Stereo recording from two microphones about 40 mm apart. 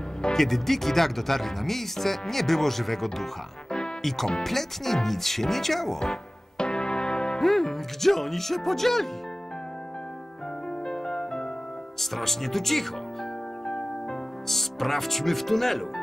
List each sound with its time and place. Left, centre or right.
0.2 s speech: centre
4.4 s speech: centre
6.6 s music: left
7.4 s speech: centre
10.9 s music: left
12.0 s speech: centre
14.5 s speech: centre